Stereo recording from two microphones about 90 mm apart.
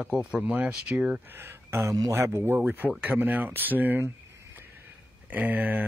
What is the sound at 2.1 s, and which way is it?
Speech, 25° right (ahead or behind).